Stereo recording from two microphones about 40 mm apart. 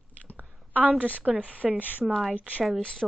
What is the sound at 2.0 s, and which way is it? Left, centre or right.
Speech, centre.